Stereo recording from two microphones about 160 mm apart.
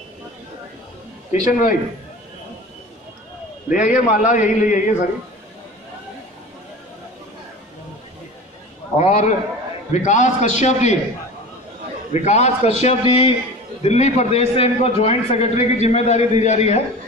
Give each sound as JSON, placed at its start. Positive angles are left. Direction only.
{"t": 1.3, "sound": "a man's voice", "side_deg": 50}
{"t": 3.6, "sound": "a man's voice", "side_deg": 55}
{"t": 8.9, "sound": "a man's voice", "side_deg": 45}
{"t": 12.1, "sound": "a man's voice", "side_deg": 45}